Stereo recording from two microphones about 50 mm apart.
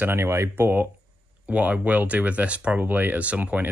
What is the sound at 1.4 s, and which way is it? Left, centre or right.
Speech, right.